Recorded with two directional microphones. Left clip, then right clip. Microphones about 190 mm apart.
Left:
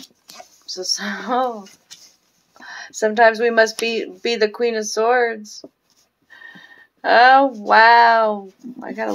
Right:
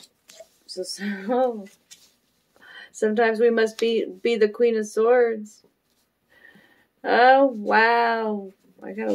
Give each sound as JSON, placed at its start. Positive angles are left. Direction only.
{"t": 0.9, "sound": "speech", "side_deg": -15}
{"t": 2.6, "sound": "a sound", "side_deg": -15}
{"t": 3.3, "sound": "speech", "side_deg": -15}
{"t": 7.0, "sound": "speech", "side_deg": -15}